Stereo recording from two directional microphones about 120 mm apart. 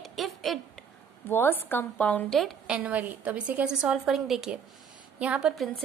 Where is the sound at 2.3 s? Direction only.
5° right (ahead or behind).